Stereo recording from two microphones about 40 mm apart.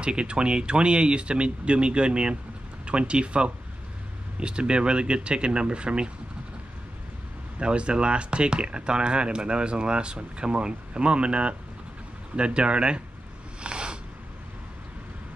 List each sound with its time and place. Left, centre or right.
0.0 s speech: right
7.5 s speech: right
13.6 s a sound: right